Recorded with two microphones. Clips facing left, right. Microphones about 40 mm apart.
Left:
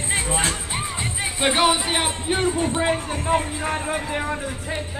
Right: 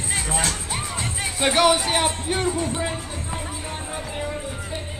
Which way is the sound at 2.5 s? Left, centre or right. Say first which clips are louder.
Left 4 dB; left.